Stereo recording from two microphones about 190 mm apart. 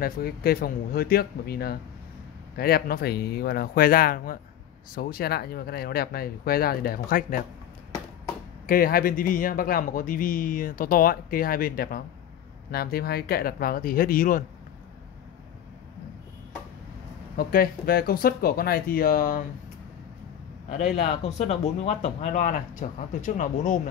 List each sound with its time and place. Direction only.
0.0 s speech: 50° left (ahead or behind)
8.6 s speech: 50° left (ahead or behind)
17.4 s speech: 50° left (ahead or behind)
20.6 s a man's voice: 35° left (ahead or behind)